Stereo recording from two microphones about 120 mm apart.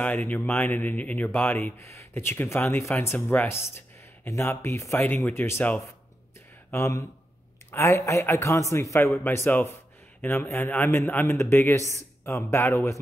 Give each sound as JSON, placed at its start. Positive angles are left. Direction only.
{"t": 0.0, "sound": "a man's voice", "side_deg": 10}